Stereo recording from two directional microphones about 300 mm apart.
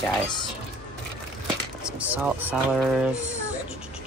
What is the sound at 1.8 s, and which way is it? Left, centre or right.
Speech, centre.